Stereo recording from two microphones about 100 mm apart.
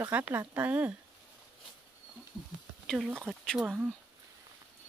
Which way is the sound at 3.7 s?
15° right (ahead or behind).